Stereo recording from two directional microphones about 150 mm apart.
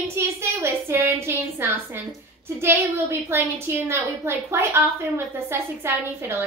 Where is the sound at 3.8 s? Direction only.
15° right (ahead or behind).